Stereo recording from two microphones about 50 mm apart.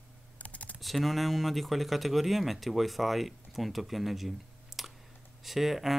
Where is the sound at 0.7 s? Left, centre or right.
Centre.